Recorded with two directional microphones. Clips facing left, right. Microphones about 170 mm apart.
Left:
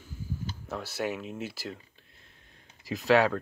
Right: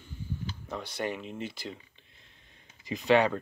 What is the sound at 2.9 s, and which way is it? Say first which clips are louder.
Speech: left 1 dB; 5° left (ahead or behind).